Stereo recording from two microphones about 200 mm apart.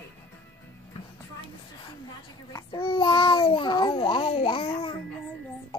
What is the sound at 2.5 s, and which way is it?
A child's voice, 25° left (ahead or behind).